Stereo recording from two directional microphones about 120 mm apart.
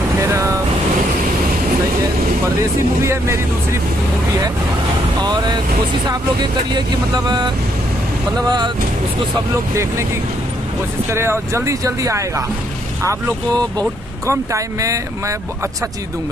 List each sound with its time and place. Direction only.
0.3 s vehicle: 25° right (ahead or behind)
3.0 s speech: 20° right (ahead or behind)
6.0 s speech: 35° right (ahead or behind)
11.1 s speech: 20° right (ahead or behind)